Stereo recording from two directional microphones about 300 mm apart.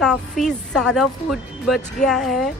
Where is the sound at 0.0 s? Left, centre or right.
Centre.